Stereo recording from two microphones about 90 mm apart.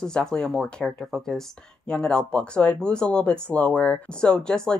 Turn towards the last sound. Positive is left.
turn(degrees=10)  # may be behind; listen again after turning